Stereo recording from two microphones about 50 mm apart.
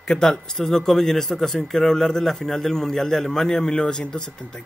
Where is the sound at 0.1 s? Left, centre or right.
Centre.